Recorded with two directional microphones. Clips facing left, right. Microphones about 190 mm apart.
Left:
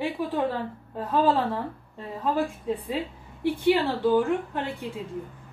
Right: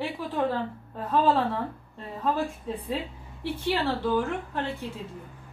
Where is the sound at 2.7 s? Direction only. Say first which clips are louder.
Left 3 dB; 10° left (ahead or behind).